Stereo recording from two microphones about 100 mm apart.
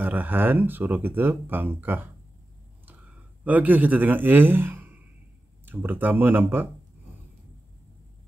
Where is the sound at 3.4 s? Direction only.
15° right (ahead or behind).